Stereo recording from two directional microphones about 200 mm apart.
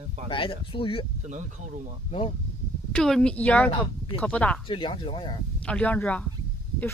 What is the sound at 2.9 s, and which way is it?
A woman's voice, 5° left (ahead or behind).